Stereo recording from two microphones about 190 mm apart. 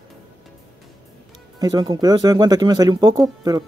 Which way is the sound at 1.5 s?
20° right (ahead or behind).